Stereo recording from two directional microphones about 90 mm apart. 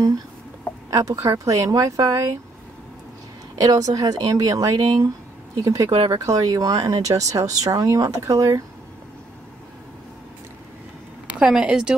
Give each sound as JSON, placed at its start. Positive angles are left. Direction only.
{"t": 0.8, "sound": "speech", "side_deg": -40}
{"t": 3.6, "sound": "speech", "side_deg": -40}
{"t": 5.9, "sound": "speech", "side_deg": -90}
{"t": 6.1, "sound": "speech", "side_deg": -40}
{"t": 11.3, "sound": "speech", "side_deg": -10}